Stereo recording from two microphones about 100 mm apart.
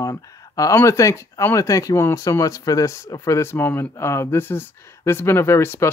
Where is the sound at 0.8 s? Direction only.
30° left (ahead or behind).